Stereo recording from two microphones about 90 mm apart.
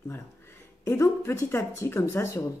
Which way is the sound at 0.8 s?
30° left (ahead or behind).